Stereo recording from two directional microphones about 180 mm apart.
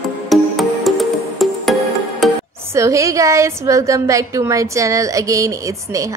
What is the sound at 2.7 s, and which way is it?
A woman's voice, 15° right (ahead or behind).